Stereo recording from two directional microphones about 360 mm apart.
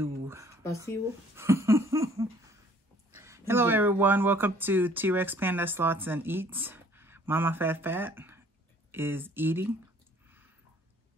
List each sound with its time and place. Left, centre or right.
0.0 s a sound: centre
1.3 s laughter: centre
3.1 s speech: centre